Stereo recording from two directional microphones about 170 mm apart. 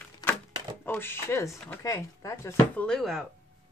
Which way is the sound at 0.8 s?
10° left (ahead or behind).